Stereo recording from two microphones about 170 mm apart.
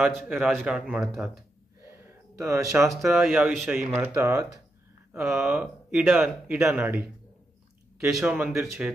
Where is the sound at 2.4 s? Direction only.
15° right (ahead or behind).